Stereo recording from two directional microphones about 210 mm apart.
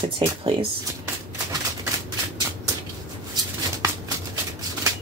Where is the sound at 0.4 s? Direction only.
25° right (ahead or behind).